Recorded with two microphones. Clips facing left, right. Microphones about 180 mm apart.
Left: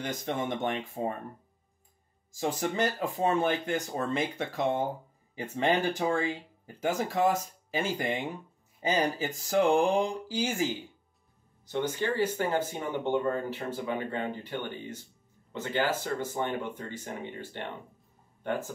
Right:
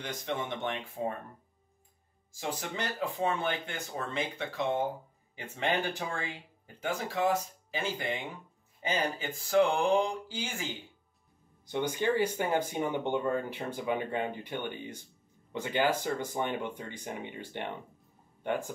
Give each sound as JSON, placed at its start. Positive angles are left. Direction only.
{"t": 0.0, "sound": "speech", "side_deg": 45}
{"t": 2.7, "sound": "speech", "side_deg": 45}
{"t": 11.7, "sound": "speech", "side_deg": -15}